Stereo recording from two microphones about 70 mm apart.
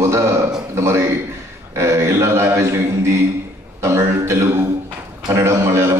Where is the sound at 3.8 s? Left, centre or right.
Right.